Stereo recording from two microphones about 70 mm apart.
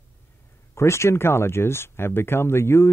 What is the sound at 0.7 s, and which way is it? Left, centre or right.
Speech, left.